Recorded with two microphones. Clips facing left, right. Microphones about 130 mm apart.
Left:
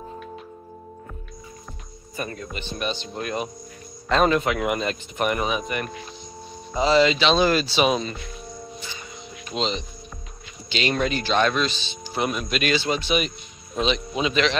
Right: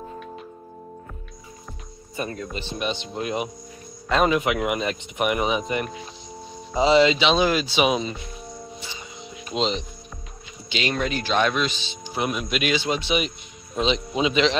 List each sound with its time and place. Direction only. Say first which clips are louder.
2.5 s speech: right 1 dB; 30° right (ahead or behind)
8.7 s music: even; 30° right (ahead or behind)
9.5 s speech: right 2 dB; 10° right (ahead or behind)